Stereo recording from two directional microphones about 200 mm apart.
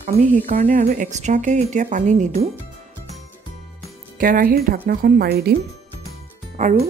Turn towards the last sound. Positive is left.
turn(degrees=-35)  # may be behind; listen again after turning